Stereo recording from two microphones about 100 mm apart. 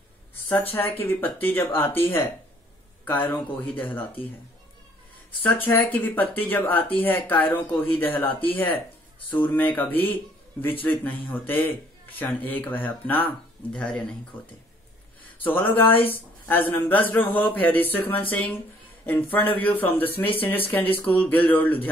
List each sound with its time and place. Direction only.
0.5 s speech: 20° left (ahead or behind)
5.7 s speech: 20° left (ahead or behind)
15.4 s speech: 20° left (ahead or behind)